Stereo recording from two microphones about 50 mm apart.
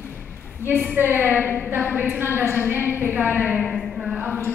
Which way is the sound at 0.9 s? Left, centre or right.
Right.